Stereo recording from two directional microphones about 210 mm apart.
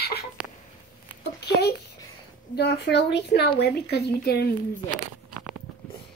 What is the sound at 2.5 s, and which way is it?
Speech, 50° left (ahead or behind).